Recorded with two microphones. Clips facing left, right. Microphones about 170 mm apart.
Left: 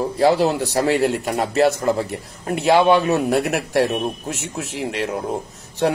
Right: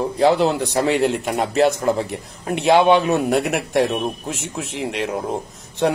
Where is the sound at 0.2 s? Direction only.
Centre (ahead or behind).